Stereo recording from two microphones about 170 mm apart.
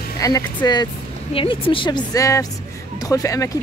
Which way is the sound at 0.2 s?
20° left (ahead or behind).